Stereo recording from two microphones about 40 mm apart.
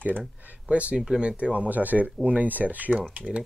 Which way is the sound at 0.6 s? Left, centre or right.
Right.